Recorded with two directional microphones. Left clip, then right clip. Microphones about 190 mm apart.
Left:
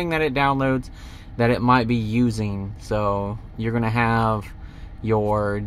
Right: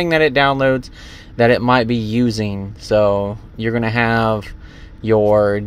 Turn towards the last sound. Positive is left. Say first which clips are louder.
# right 9 dB
turn(degrees=-20)  # may be behind; listen again after turning